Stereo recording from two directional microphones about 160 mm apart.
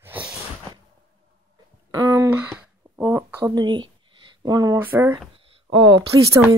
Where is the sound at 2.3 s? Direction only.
10° right (ahead or behind).